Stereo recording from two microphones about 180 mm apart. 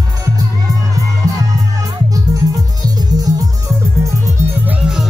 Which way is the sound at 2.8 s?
20° right (ahead or behind).